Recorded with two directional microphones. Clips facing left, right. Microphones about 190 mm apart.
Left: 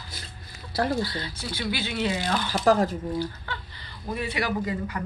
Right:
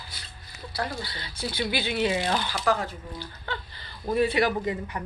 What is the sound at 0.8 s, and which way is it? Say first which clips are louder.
Speech: left 8 dB; 50° left (ahead or behind).